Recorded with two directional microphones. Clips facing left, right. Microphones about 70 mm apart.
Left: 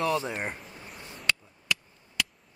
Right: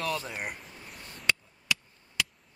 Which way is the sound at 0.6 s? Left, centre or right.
Centre.